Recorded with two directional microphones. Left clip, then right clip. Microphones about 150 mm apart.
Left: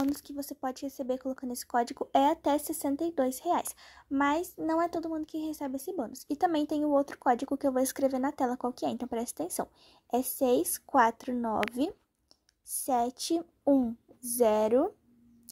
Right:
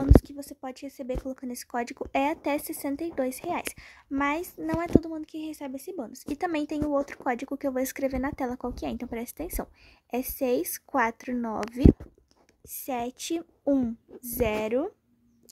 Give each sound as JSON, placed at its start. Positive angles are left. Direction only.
{"t": 0.4, "sound": "speech", "side_deg": 5}
{"t": 12.8, "sound": "a woman's voice", "side_deg": -5}
{"t": 13.7, "sound": "speech", "side_deg": -15}
{"t": 14.3, "sound": "a woman's voice", "side_deg": 0}